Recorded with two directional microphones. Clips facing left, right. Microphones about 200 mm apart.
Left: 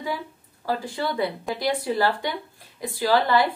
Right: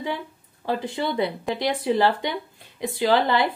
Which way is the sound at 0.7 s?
20° right (ahead or behind).